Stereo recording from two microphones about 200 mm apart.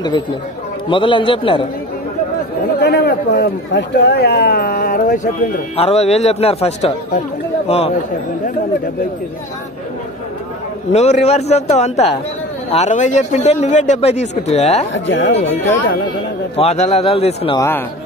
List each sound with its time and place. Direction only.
0.8 s a man's voice: 25° left (ahead or behind)
2.8 s speech: 55° left (ahead or behind); by 7.9 s 30° left (ahead or behind)
10.9 s speech: 35° left (ahead or behind)
15.0 s speech: 65° left (ahead or behind)
16.5 s speech: 35° left (ahead or behind)
17.6 s speech: 10° left (ahead or behind)